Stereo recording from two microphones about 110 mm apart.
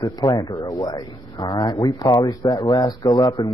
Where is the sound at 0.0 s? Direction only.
35° left (ahead or behind).